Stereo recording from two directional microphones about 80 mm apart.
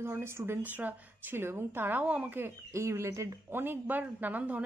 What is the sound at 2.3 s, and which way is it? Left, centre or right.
Speech, right.